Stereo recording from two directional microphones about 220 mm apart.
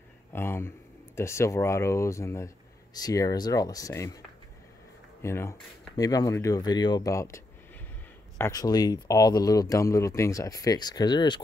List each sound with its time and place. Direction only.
0.3 s speech: 10° left (ahead or behind)
5.2 s speech: 10° left (ahead or behind)